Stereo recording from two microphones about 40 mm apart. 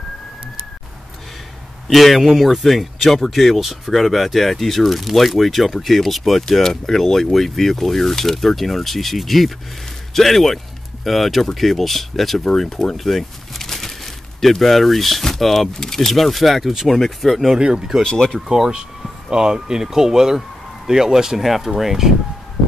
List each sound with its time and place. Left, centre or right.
1.9 s speech: centre
17.6 s speech: right
18.0 s speech: centre
18.5 s speech: centre
21.4 s speech: centre